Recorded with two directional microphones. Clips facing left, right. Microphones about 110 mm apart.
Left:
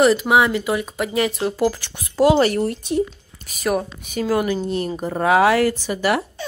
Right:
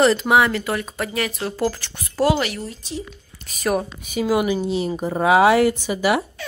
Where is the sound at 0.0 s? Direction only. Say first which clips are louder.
Left 1 dB; 10° left (ahead or behind).